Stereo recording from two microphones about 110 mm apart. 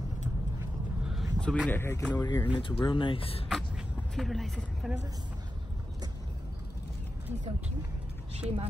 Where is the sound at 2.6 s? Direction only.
45° left (ahead or behind).